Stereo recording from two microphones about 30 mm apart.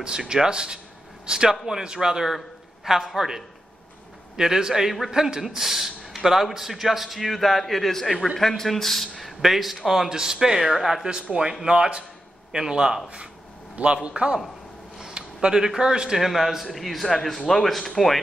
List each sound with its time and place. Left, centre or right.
0.0 s speech: right
2.8 s a man's voice: centre
7.2 s a man's voice: centre
9.1 s a man's voice: centre
10.0 s speech: right
10.6 s a man's voice: centre
11.6 s speech: right
14.0 s a man's voice: right
15.0 s a sound: right
15.8 s speech: right
16.2 s a man's voice: centre
16.7 s a man's voice: centre